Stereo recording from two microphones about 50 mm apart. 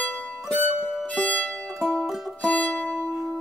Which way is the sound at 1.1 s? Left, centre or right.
Left.